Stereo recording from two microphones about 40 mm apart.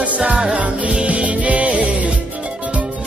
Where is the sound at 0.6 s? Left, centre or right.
Right.